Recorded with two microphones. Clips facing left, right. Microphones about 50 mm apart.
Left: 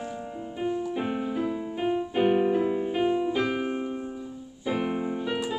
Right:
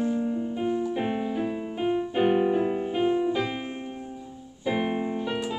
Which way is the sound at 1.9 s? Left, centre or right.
Centre.